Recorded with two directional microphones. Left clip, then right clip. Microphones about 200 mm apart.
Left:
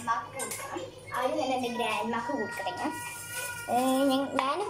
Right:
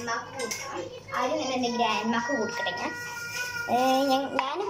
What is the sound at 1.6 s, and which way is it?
Speech, centre (ahead or behind).